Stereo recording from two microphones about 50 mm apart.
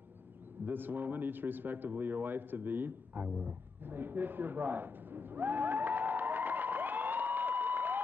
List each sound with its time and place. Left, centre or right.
0.7 s a man's voice: right